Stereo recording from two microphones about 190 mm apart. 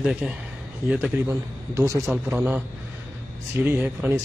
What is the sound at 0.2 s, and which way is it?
A man's voice, 5° right (ahead or behind).